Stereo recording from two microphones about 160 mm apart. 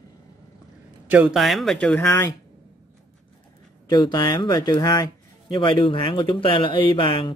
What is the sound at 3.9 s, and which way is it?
Speech, 25° left (ahead or behind).